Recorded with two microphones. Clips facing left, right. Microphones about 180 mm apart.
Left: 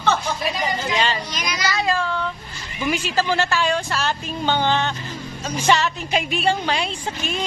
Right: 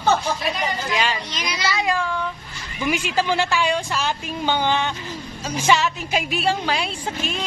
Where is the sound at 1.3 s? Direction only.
25° right (ahead or behind).